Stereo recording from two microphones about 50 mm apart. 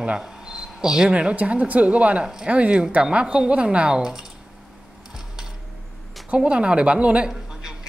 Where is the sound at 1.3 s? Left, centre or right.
Right.